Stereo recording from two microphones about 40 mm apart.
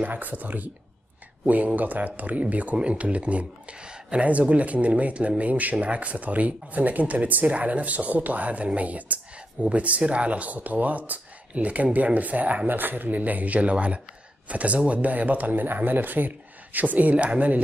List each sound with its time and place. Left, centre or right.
0.0 s speech: right
1.8 s speech: right
4.3 s speech: right